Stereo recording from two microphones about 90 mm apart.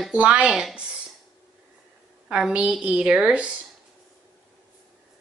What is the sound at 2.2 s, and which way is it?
A woman's voice, 10° right (ahead or behind).